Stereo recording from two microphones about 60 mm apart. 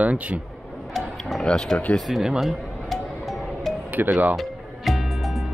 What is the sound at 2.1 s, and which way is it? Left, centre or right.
Music, centre.